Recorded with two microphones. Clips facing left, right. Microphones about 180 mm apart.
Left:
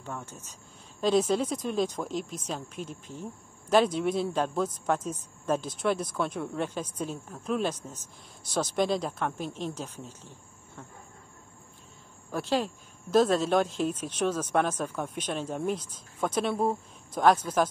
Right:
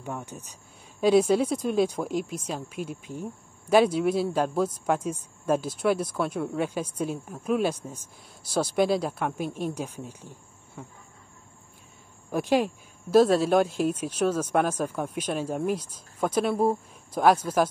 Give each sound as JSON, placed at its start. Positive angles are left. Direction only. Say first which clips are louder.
{"t": 0.0, "sound": "speech", "louder": "right 4 dB", "side_deg": -15}
{"t": 12.3, "sound": "speech", "louder": "right 5 dB", "side_deg": -15}